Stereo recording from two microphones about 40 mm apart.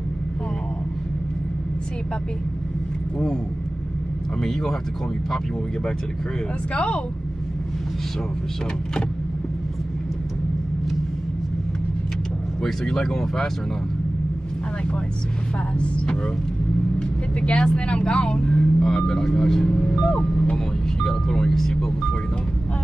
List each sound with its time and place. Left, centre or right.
4.4 s speech: centre
6.7 s speech: left
12.6 s speech: centre
17.4 s speech: left
18.8 s speech: centre